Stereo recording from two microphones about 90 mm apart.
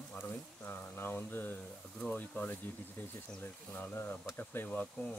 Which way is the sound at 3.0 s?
20° left (ahead or behind).